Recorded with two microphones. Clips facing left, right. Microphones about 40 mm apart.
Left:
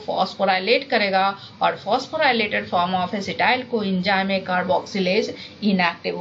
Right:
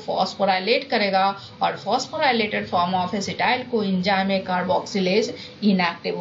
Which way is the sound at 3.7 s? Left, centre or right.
Left.